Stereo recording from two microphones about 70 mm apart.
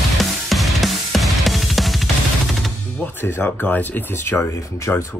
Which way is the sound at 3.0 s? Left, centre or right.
Left.